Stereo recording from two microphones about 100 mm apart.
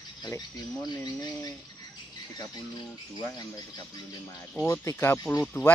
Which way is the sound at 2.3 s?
40° left (ahead or behind).